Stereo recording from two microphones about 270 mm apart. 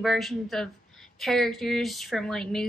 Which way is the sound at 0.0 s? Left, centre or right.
Centre.